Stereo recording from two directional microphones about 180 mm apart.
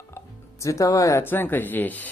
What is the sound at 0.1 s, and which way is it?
Speech, 15° left (ahead or behind).